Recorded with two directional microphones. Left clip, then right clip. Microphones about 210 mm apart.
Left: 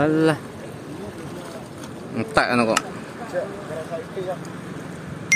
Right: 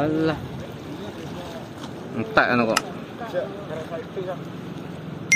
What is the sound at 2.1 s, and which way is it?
Speech, 20° left (ahead or behind).